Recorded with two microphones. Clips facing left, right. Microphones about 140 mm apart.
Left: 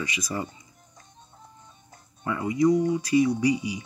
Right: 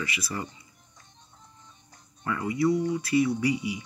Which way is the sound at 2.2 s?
20° left (ahead or behind).